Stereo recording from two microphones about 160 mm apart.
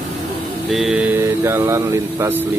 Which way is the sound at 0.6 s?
Centre (ahead or behind).